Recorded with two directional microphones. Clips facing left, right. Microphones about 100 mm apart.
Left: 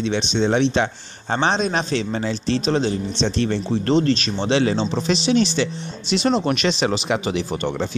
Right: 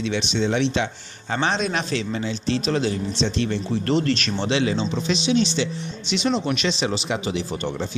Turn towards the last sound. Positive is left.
turn(degrees=60)  # may be behind; listen again after turning